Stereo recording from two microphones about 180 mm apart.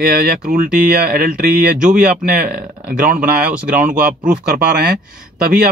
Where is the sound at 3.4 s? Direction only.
5° right (ahead or behind).